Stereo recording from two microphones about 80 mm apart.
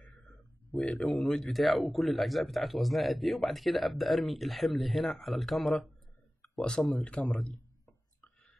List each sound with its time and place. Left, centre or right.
0.7 s a man's voice: centre